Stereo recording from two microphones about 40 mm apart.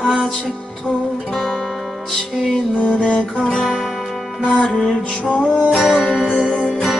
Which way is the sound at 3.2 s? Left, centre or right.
Left.